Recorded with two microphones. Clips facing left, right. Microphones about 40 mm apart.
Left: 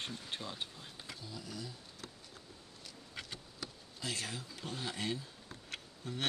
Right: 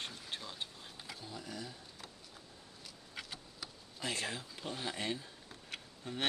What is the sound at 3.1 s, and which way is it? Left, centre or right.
Insect, centre.